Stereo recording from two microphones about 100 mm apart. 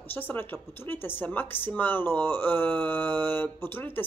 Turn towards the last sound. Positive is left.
turn(degrees=20)  # may be behind; listen again after turning